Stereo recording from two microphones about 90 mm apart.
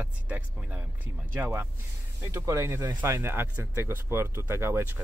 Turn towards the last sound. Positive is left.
turn(degrees=-25)  # may be behind; listen again after turning